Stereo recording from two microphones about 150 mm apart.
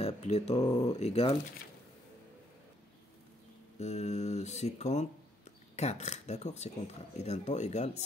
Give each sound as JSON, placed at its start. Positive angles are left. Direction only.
{"t": 0.0, "sound": "speech", "side_deg": 45}
{"t": 0.7, "sound": "speech", "side_deg": 30}
{"t": 0.9, "sound": "speech", "side_deg": 45}
{"t": 3.7, "sound": "speech", "side_deg": 50}